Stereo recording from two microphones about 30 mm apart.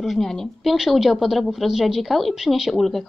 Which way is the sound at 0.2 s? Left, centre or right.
Centre.